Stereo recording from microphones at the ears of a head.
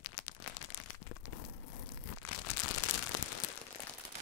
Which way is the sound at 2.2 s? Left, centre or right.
Left.